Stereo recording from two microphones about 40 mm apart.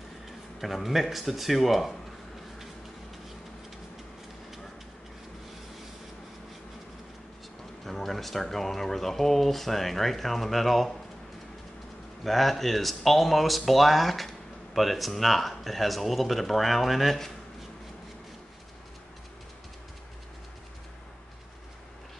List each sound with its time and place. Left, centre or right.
0.6 s speech: centre
7.8 s speech: centre
12.2 s speech: centre